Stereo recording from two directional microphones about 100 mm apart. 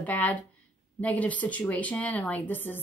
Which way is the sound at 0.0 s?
15° left (ahead or behind).